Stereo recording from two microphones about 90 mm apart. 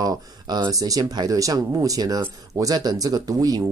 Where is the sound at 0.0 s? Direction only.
50° right (ahead or behind).